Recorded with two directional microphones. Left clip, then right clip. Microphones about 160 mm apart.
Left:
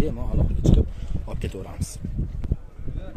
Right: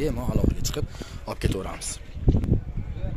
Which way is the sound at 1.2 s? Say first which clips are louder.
Right 6 dB; 15° right (ahead or behind).